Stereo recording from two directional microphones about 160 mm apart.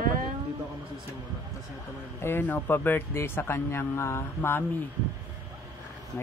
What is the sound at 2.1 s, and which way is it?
Speech, 15° left (ahead or behind).